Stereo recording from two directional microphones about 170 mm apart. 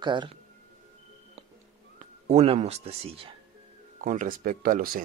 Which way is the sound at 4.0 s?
50° right (ahead or behind).